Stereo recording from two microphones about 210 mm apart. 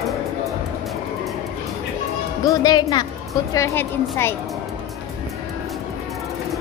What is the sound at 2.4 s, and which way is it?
A woman's voice, 20° left (ahead or behind).